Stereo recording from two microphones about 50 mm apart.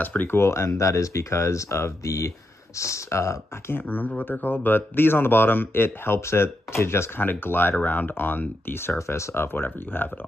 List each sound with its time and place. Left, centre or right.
0.0 s speech: left
0.3 s speech: left
3.7 s speech: left
7.2 s speech: left
8.9 s speech: left